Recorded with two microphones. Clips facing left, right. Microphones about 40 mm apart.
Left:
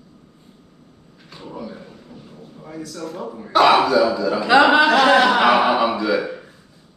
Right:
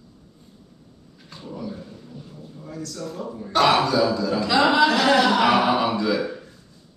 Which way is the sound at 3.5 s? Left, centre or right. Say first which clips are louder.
Left 5 dB; centre.